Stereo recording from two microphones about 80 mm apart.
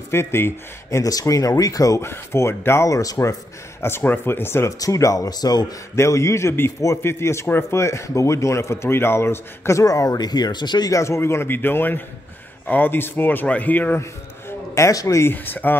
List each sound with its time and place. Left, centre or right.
0.1 s speech: left
0.8 s speech: left
2.0 s speech: left
3.8 s speech: left
4.7 s speech: left
5.9 s speech: left
10.9 s speech: left
14.8 s speech: left
15.3 s speech: left